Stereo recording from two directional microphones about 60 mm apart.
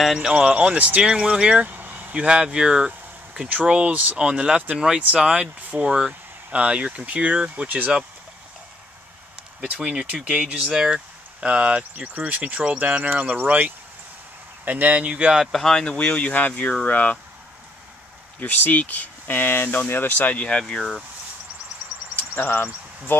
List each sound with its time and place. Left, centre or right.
0.0 s speech: centre
0.3 s speech: centre
1.0 s speech: centre; by 2.1 s right
2.1 s speech: centre
4.2 s speech: centre
9.6 s speech: right
15.4 s speech: centre; by 17.2 s left
18.4 s speech: left; by 21.0 s centre
22.4 s speech: left